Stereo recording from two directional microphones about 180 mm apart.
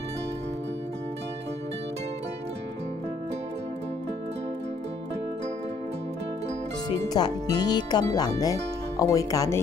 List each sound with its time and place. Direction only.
7.2 s speech: 25° left (ahead or behind)